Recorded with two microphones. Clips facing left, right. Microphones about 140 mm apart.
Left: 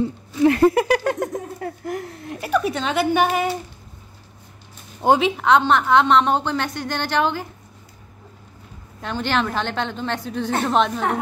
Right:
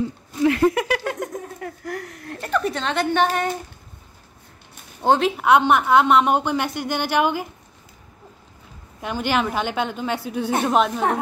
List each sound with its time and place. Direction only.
0.4 s a sound: 35° left (ahead or behind)
1.6 s speech: 25° left (ahead or behind)
2.4 s a woman's voice: 5° left (ahead or behind)
5.2 s a woman's voice: 5° right (ahead or behind)
9.0 s a woman's voice: 10° right (ahead or behind)